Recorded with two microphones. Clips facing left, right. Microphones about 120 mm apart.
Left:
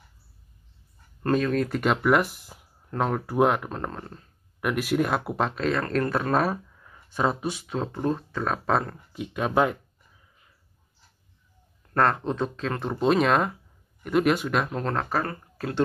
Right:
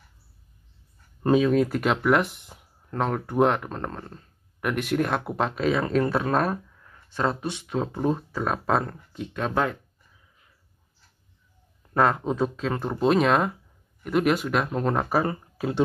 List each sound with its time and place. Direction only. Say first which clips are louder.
1.2 s speech: right 4 dB; 5° right (ahead or behind); by 9.8 s 15° left (ahead or behind)
11.8 s speech: right 1 dB; 5° right (ahead or behind)